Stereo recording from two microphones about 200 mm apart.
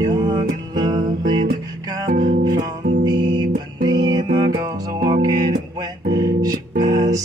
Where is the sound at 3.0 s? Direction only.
20° right (ahead or behind).